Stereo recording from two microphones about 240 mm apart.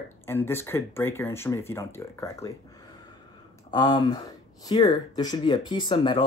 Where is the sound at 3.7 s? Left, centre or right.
Centre.